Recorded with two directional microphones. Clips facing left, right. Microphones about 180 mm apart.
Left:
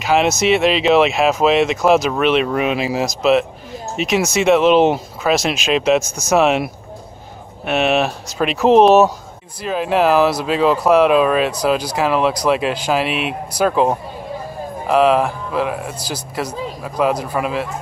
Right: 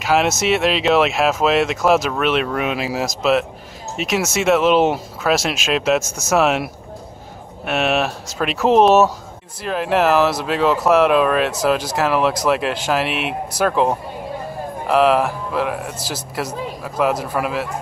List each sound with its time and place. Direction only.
0.0 s speech: centre (ahead or behind)